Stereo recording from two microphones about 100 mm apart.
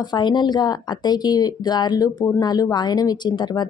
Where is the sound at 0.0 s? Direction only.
45° left (ahead or behind).